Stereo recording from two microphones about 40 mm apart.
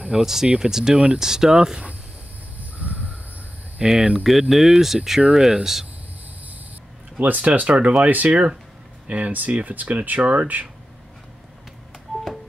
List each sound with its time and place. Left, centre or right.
0.1 s speech: centre
2.8 s a sound: right
3.9 s speech: centre
4.2 s speech: centre
7.2 s speech: right